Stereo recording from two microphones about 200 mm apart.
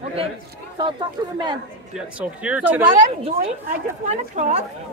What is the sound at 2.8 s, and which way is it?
Speech, 30° right (ahead or behind).